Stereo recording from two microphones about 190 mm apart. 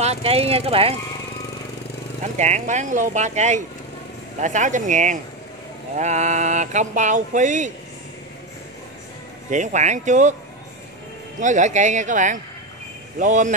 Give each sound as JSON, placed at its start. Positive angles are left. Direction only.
{"t": 0.0, "sound": "speech", "side_deg": -35}
{"t": 2.3, "sound": "speech", "side_deg": -35}
{"t": 9.5, "sound": "speech", "side_deg": -40}
{"t": 11.4, "sound": "speech", "side_deg": -40}